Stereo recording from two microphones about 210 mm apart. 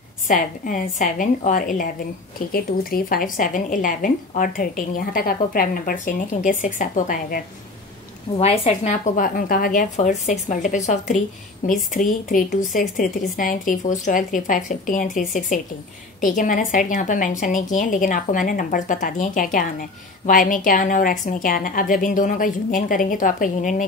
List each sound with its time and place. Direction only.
0.3 s a woman's voice: 35° left (ahead or behind)
8.4 s a woman's voice: 30° left (ahead or behind)